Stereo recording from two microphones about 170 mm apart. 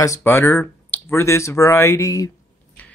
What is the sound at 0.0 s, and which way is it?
Speech, 15° left (ahead or behind).